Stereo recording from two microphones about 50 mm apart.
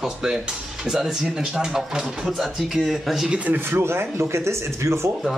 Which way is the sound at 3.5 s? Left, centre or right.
Right.